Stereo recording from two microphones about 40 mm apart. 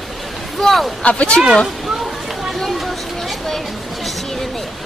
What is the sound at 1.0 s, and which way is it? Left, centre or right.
Speech, left.